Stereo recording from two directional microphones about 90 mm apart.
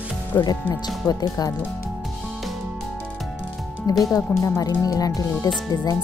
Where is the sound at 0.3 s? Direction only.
40° left (ahead or behind).